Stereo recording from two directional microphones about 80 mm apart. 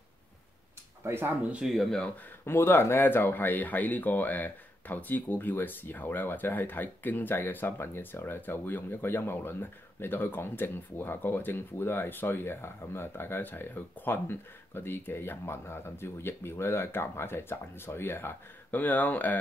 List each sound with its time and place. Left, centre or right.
1.0 s speech: right
1.5 s speech: centre
2.4 s speech: left